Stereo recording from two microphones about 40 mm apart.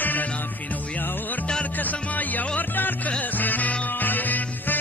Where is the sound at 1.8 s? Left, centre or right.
Left.